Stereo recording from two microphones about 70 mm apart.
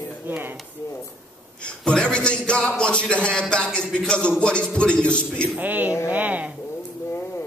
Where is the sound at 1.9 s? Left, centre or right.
Centre.